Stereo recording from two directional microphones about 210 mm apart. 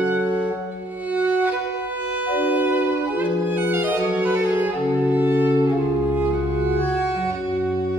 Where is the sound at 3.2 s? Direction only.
10° right (ahead or behind).